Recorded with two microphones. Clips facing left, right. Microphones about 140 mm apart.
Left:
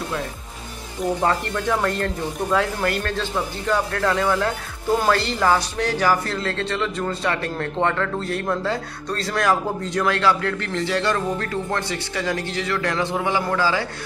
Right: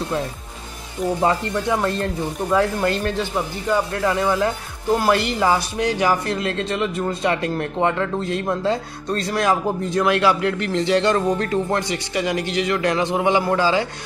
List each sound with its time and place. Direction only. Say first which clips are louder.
1.2 s a man's voice: right 3 dB; 15° right (ahead or behind)